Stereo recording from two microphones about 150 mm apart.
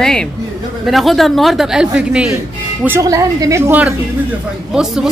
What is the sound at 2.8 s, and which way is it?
A woman's voice, 20° right (ahead or behind).